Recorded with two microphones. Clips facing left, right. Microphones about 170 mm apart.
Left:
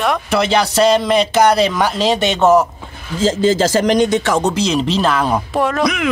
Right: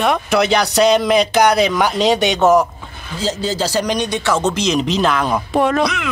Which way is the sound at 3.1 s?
50° left (ahead or behind).